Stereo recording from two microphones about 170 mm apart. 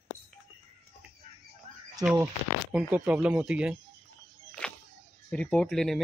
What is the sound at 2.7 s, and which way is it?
Speech, 5° right (ahead or behind).